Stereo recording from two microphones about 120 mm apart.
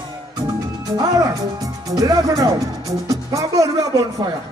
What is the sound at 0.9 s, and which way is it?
Music, 30° right (ahead or behind).